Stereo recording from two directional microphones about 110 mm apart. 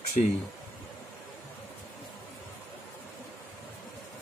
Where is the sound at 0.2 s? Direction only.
90° left.